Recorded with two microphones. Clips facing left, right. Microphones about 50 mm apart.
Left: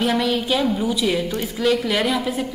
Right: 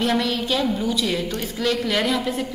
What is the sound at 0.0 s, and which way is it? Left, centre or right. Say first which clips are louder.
A woman's voice: left 2 dB; centre.